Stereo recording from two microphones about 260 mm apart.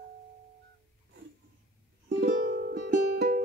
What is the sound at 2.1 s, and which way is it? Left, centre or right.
Music, right.